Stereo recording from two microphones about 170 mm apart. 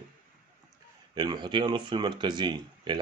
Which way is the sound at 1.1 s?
25° right (ahead or behind).